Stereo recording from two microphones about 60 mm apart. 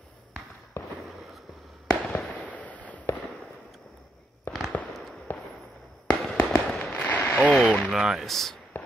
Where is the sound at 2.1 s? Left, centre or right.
Left.